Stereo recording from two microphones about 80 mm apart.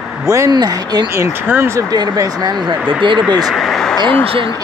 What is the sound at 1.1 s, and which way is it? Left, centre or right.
Speech, right.